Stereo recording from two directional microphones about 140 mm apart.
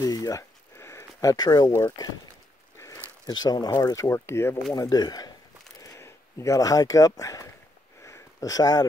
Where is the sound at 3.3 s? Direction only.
25° left (ahead or behind).